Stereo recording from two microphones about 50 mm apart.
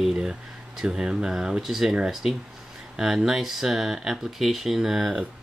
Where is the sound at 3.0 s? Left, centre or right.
Centre.